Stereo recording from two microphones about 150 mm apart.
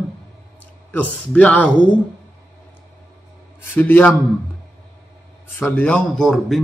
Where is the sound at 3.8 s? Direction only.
10° left (ahead or behind).